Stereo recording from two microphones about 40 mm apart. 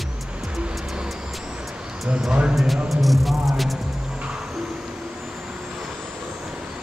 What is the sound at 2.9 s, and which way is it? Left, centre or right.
Music, centre.